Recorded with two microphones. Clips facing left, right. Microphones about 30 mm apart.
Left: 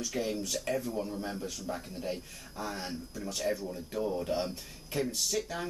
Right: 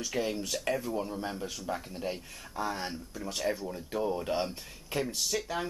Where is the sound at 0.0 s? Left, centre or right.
Centre.